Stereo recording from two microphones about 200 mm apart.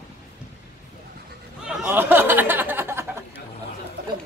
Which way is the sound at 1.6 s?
10° right (ahead or behind).